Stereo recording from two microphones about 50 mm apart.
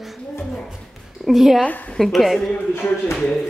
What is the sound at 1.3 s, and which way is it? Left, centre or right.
Speech, centre.